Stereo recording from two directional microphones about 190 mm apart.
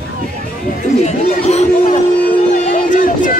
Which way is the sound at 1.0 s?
35° left (ahead or behind).